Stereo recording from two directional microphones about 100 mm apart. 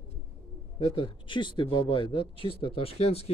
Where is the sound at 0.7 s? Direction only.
65° left (ahead or behind).